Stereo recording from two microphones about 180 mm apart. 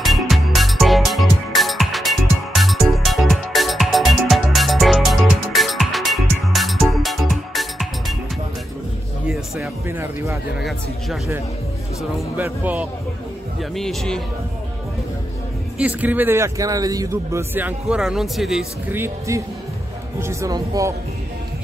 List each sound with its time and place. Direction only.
0.0 s music: centre (ahead or behind)
9.8 s speech: 15° right (ahead or behind)
12.4 s a man's voice: 10° right (ahead or behind)
13.6 s speech: centre (ahead or behind)
15.8 s a man's voice: 10° right (ahead or behind)
18.9 s a man's voice: 15° right (ahead or behind)